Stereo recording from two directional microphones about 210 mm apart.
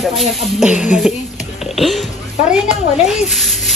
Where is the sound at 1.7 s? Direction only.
Centre (ahead or behind).